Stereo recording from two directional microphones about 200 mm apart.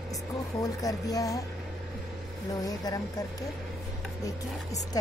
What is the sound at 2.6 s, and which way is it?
Speech, 20° left (ahead or behind).